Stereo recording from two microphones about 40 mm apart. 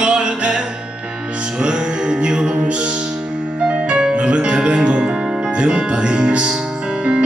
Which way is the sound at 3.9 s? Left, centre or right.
Right.